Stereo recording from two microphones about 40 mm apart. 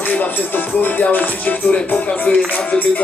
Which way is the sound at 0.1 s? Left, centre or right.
Left.